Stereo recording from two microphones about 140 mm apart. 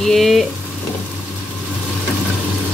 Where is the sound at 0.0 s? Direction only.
Centre (ahead or behind).